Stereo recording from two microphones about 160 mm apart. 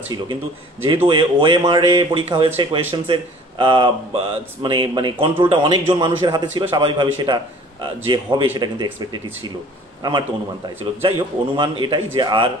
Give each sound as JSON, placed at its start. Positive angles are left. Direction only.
{"t": 0.8, "sound": "a man's voice", "side_deg": -30}
{"t": 11.0, "sound": "a man's voice", "side_deg": -30}